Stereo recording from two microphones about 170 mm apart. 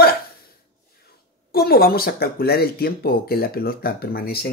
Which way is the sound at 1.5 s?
65° left (ahead or behind).